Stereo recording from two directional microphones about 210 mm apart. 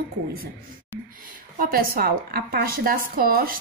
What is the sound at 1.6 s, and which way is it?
A woman's voice, 45° right (ahead or behind).